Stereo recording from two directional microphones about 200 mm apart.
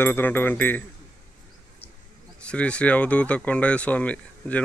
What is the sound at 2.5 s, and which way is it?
Speech, 5° left (ahead or behind).